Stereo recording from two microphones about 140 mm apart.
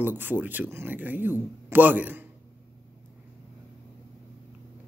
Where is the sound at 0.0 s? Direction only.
15° right (ahead or behind).